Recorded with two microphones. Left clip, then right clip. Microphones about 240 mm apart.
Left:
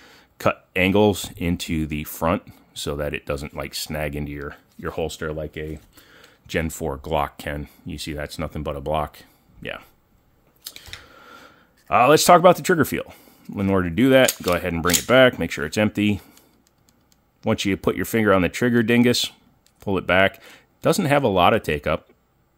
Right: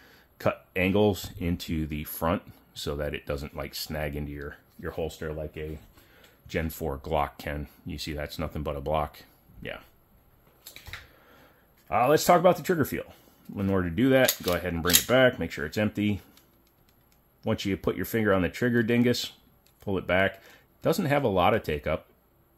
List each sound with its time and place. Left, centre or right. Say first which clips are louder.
0.0 s speech: left 6 dB; left
6.4 s speech: left 6 dB; left
10.6 s speech: left 5 dB; left
17.4 s speech: left 7 dB; left